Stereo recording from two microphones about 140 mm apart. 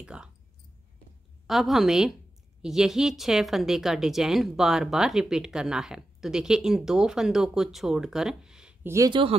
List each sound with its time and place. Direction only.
0.0 s speech: 5° right (ahead or behind)
1.5 s speech: centre (ahead or behind)
8.8 s speech: 20° right (ahead or behind)
9.1 s speech: 40° right (ahead or behind)